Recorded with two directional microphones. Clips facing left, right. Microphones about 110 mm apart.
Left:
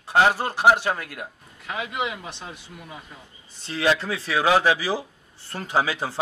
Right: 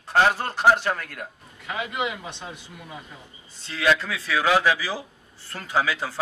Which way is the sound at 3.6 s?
25° left (ahead or behind).